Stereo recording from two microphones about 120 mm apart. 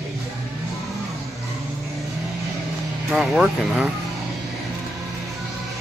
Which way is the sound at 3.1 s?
5° right (ahead or behind).